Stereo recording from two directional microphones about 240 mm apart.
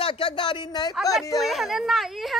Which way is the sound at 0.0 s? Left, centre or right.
Left.